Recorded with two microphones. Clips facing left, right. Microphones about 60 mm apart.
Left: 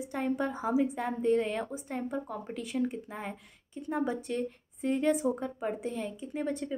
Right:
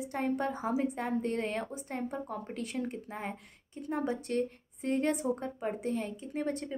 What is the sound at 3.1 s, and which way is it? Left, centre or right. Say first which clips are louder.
Speech: even; right.